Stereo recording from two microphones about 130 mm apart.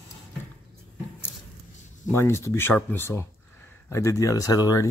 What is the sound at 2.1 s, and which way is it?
Speech, 20° left (ahead or behind).